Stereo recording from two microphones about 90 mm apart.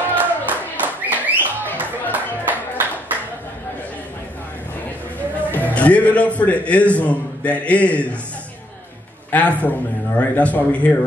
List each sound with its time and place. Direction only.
0.1 s music: 20° right (ahead or behind)
2.4 s a sound: 20° right (ahead or behind)
5.5 s a man's voice: 15° left (ahead or behind)
9.3 s a man's voice: 15° left (ahead or behind)